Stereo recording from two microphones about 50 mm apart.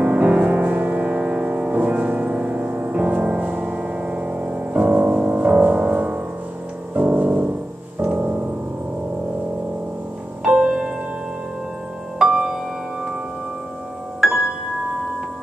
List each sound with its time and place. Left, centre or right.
0.0 s music: right
6.9 s piano: right
8.0 s keyboard: right
10.4 s music: right
14.2 s music: centre